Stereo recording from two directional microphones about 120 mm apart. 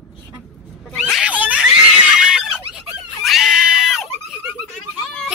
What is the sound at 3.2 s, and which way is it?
Screaming, centre (ahead or behind).